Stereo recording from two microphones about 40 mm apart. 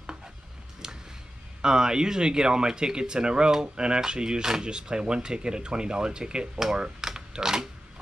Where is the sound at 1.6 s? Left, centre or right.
Centre.